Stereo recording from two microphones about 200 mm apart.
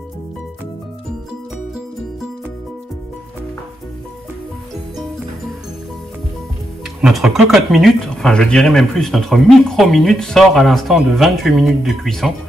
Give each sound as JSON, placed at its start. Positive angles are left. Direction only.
{"t": 7.0, "sound": "speech", "side_deg": 0}